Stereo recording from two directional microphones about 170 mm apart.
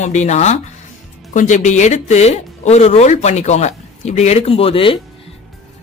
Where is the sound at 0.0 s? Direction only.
45° left (ahead or behind).